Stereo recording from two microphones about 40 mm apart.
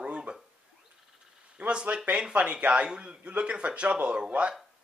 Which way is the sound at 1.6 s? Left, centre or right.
Right.